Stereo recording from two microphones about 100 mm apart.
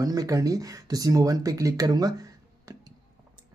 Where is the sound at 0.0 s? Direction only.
35° right (ahead or behind).